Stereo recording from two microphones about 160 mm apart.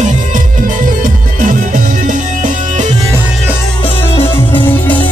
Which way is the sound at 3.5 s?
10° left (ahead or behind).